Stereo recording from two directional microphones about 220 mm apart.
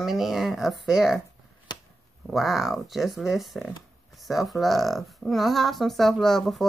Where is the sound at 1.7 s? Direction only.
20° left (ahead or behind).